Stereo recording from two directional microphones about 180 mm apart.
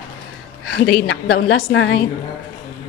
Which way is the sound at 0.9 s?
80° left.